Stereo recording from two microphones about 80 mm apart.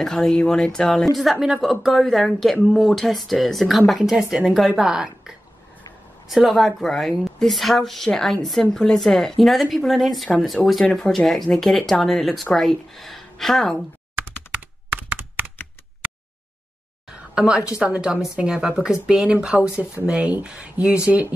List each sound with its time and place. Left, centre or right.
0.0 s a woman's voice: centre
14.9 s computer keyboard: right
17.4 s a woman's voice: centre